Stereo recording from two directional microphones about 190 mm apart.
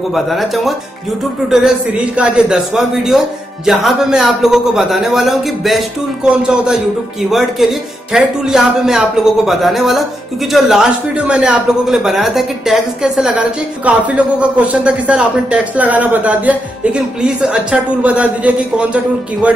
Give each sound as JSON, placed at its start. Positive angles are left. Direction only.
{"t": 0.1, "sound": "a man's voice", "side_deg": 0}